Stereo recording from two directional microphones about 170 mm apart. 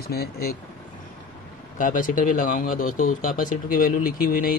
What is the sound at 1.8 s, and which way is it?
Speech, 50° left (ahead or behind).